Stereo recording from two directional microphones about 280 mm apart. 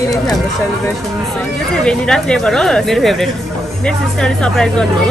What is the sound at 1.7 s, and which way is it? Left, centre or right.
Speech, centre.